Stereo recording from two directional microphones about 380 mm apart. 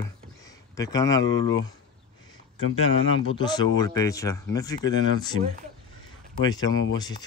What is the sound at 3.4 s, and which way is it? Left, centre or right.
Speech, centre.